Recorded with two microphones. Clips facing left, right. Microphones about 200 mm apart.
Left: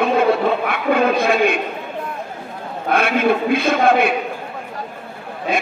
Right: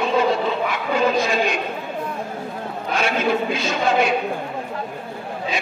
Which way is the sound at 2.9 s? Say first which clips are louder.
Left 4 dB; 55° left (ahead or behind).